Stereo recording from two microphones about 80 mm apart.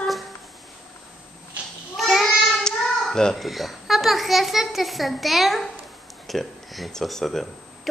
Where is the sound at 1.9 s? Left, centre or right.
Centre.